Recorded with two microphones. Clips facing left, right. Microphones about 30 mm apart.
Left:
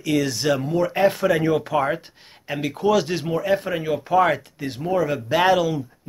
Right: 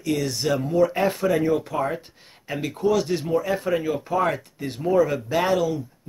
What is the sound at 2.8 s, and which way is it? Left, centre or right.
Speech, left.